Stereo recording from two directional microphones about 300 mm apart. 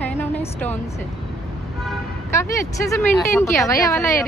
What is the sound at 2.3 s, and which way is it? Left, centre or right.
A woman's voice, centre.